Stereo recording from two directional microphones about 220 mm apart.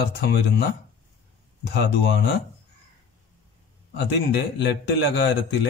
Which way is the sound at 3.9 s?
50° left (ahead or behind).